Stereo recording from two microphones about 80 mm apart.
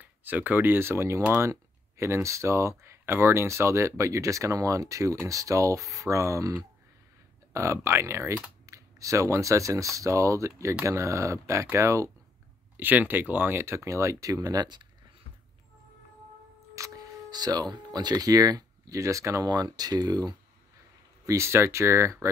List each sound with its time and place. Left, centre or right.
0.0 s speech: right
12.7 s speech: right
16.7 s a sound: right
17.3 s speech: right
19.4 s speech: right
21.3 s speech: right